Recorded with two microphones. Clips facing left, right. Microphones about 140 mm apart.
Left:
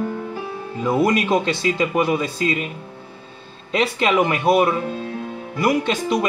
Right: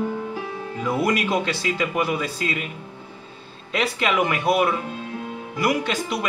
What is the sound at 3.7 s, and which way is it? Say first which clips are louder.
A man's voice: left 4 dB; 25° left (ahead or behind).